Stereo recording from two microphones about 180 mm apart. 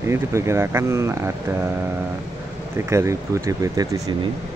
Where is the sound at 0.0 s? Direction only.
15° right (ahead or behind).